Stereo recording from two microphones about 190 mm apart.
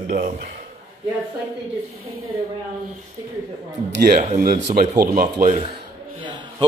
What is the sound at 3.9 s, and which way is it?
Speech, 60° right (ahead or behind).